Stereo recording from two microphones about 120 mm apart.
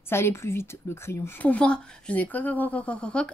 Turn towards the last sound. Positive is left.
turn(degrees=10)  # may be behind; listen again after turning